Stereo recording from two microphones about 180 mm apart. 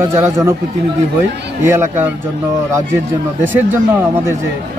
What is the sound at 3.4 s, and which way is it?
Speech, 10° right (ahead or behind).